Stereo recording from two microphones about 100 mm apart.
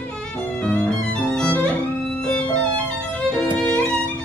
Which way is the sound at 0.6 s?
10° left (ahead or behind).